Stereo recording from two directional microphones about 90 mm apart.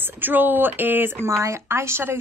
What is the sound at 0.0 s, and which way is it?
A woman's voice, 20° right (ahead or behind).